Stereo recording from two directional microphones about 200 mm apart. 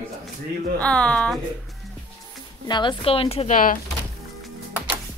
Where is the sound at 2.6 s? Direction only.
20° left (ahead or behind); by 3.7 s 40° left (ahead or behind).